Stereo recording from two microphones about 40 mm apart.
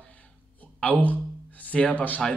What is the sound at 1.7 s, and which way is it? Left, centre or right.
Speech, left.